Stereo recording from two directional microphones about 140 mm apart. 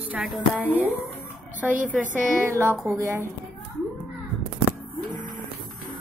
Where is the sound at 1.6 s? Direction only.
10° right (ahead or behind).